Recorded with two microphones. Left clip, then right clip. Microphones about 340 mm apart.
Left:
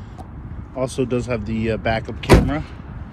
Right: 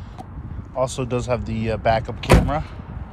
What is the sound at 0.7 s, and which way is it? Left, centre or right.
Speech, centre.